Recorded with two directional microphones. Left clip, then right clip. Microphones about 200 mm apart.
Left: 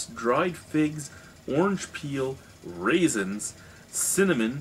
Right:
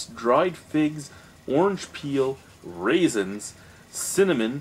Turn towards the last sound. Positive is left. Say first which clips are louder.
# right 3 dB
turn(degrees=0)  # may be behind; listen again after turning